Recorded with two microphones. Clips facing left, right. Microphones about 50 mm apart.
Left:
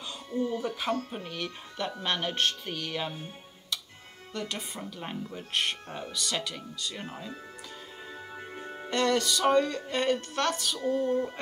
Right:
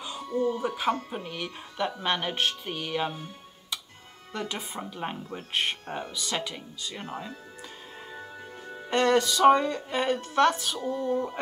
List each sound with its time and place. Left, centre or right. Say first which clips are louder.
0.0 s a sound: right 4 dB; centre
0.5 s speech: right 3 dB; centre
4.3 s speech: right 2 dB; centre
8.9 s music: right 4 dB; right
9.2 s speech: right 4 dB; centre
11.1 s speech: even; centre